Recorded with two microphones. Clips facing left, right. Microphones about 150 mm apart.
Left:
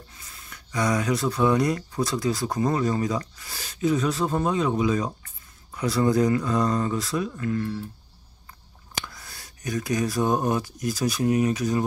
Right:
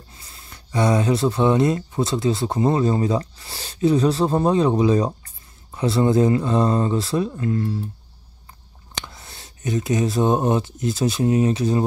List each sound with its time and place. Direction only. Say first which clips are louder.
0.1 s speech: right 2 dB; 30° right (ahead or behind)
9.0 s speech: right 2 dB; 25° right (ahead or behind)